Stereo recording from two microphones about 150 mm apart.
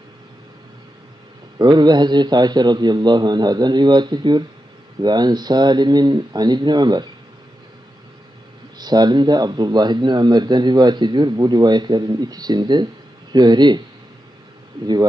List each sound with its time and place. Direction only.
1.6 s speech: 30° right (ahead or behind)
8.7 s speech: 25° right (ahead or behind)